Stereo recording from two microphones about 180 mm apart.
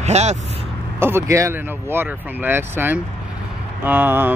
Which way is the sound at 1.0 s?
15° right (ahead or behind).